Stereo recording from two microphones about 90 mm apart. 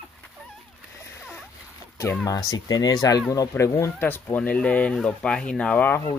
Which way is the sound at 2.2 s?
40° left (ahead or behind).